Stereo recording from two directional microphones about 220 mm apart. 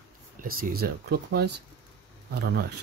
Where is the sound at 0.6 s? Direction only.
45° right (ahead or behind).